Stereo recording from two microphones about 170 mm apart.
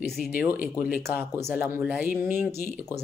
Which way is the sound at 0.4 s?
10° right (ahead or behind).